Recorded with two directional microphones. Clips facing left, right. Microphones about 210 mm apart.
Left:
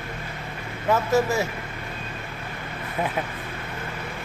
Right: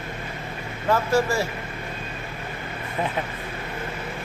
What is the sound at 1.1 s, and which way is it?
Speech, 20° left (ahead or behind).